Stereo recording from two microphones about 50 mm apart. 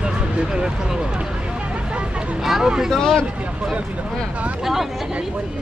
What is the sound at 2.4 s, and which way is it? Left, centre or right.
Speech, centre.